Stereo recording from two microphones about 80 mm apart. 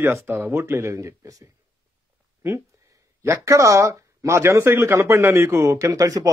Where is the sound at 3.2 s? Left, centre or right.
Right.